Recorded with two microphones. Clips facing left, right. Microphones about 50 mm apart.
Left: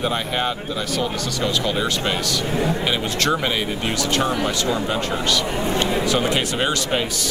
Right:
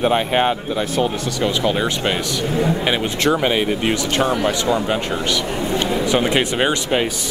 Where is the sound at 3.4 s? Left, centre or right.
Centre.